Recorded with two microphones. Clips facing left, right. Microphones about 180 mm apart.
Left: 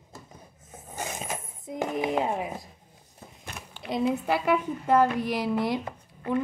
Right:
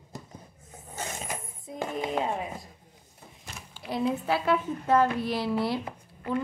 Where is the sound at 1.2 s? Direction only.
20° left (ahead or behind).